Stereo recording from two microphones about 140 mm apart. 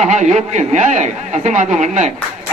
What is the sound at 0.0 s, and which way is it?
A man's voice, 55° right (ahead or behind).